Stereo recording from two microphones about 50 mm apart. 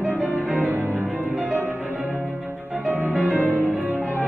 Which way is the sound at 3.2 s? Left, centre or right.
Right.